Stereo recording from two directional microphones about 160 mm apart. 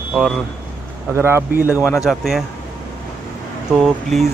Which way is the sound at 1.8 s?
20° left (ahead or behind).